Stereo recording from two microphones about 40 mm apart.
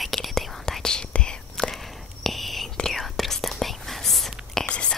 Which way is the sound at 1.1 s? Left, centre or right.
Left.